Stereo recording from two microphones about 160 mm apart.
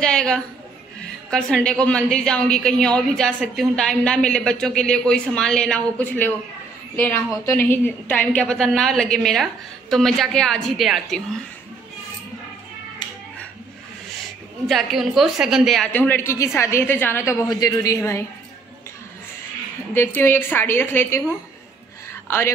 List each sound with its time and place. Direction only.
0.0 s a woman's voice: 5° left (ahead or behind)
14.7 s a woman's voice: centre (ahead or behind); by 18.2 s 15° left (ahead or behind)
20.2 s a woman's voice: 15° left (ahead or behind)
22.1 s a sound: 15° left (ahead or behind)